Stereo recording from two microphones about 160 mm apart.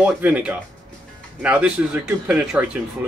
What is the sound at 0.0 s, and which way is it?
Speech, 10° right (ahead or behind).